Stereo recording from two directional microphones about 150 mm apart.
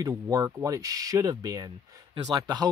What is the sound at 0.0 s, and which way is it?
Speech, 20° right (ahead or behind).